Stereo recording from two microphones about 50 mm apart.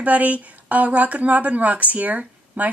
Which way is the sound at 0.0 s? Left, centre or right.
Right.